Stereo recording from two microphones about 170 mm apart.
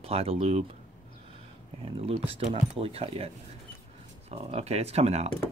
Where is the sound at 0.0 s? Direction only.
35° right (ahead or behind).